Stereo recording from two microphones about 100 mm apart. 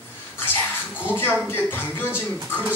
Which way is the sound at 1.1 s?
20° left (ahead or behind).